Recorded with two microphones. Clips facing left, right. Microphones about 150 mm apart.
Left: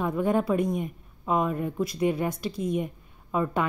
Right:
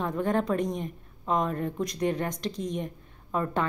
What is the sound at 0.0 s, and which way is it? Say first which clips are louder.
A woman's voice: left 2 dB; 10° left (ahead or behind).